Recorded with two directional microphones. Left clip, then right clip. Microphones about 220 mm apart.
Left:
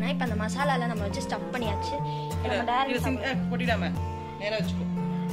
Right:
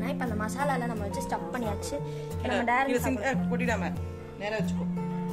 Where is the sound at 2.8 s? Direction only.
50° right (ahead or behind).